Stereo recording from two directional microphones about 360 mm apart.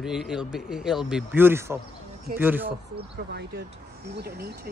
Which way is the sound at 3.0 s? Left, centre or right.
Right.